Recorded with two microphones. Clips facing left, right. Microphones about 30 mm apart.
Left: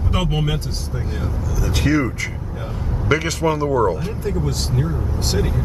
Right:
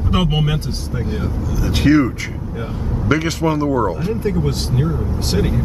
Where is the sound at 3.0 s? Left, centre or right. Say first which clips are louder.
Right 1 dB; centre.